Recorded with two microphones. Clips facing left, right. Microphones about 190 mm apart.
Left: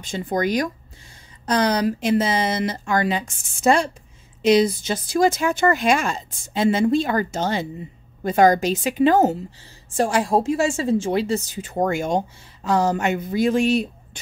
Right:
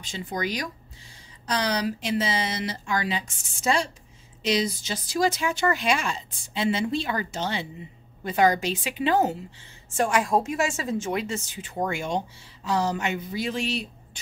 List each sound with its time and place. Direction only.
0.0 s a woman's voice: 50° left (ahead or behind)
9.9 s a woman's voice: 30° left (ahead or behind); by 13.8 s 50° left (ahead or behind)